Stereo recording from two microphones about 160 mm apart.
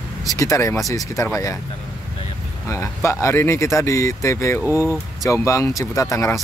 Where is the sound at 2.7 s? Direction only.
20° left (ahead or behind).